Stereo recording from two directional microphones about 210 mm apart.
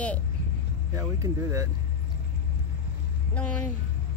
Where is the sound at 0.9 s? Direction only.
15° right (ahead or behind).